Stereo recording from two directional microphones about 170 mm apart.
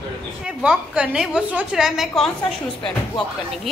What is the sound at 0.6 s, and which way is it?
A woman's voice, 5° right (ahead or behind).